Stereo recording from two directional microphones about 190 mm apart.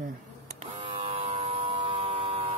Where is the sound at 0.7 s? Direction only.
25° right (ahead or behind).